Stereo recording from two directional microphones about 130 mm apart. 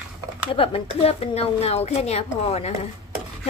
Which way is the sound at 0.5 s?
45° left (ahead or behind).